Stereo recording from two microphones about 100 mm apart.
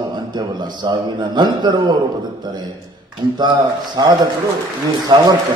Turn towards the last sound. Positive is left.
turn(degrees=-50)  # may be behind; listen again after turning